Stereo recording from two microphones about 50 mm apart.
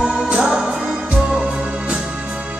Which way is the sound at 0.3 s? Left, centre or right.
Centre.